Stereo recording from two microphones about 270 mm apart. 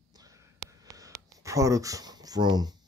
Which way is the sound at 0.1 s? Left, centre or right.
Centre.